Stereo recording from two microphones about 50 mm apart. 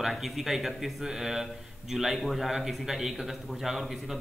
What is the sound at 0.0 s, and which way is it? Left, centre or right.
Speech, centre.